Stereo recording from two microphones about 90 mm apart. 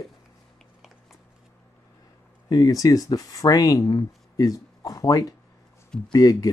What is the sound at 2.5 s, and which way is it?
Speech, 45° left (ahead or behind).